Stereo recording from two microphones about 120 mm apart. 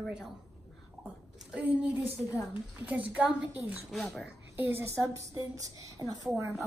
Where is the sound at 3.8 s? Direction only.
Centre (ahead or behind).